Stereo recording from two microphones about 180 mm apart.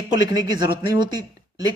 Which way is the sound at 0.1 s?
20° right (ahead or behind).